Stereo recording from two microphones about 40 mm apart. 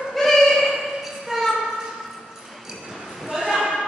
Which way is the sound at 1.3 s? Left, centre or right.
Centre.